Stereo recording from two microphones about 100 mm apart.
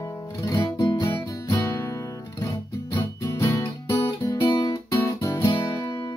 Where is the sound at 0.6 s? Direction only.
40° left (ahead or behind).